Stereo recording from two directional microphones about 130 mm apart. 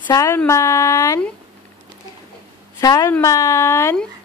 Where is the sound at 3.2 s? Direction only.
25° left (ahead or behind).